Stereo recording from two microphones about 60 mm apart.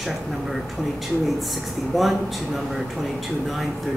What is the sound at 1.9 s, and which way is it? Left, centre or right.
Speech, centre.